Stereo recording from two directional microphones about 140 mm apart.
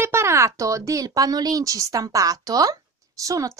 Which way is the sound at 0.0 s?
20° right (ahead or behind).